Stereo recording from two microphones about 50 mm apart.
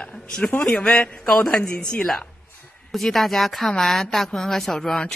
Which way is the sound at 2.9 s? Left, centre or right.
Centre.